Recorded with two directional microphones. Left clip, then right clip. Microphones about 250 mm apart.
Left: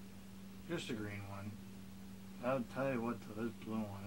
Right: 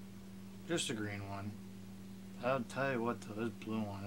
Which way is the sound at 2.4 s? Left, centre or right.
Right.